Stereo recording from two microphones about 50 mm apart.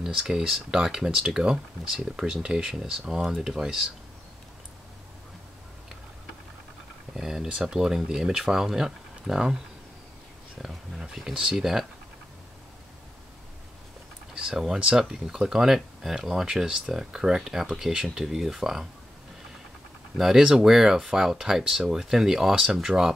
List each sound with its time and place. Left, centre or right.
0.0 s speech: centre
7.2 s speech: centre
10.6 s speech: centre
14.3 s a sound: centre
15.0 s speech: centre
20.2 s speech: centre